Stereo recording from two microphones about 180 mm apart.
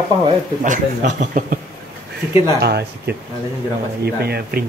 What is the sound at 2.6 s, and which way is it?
Speech, 65° right (ahead or behind).